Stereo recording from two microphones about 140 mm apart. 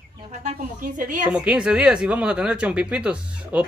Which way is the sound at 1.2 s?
5° right (ahead or behind).